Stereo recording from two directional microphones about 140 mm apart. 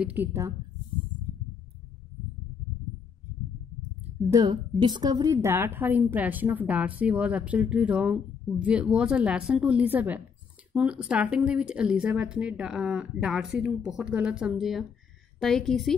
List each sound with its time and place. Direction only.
0.0 s a woman's voice: 15° right (ahead or behind)
4.3 s a woman's voice: 30° right (ahead or behind); by 15.9 s centre (ahead or behind)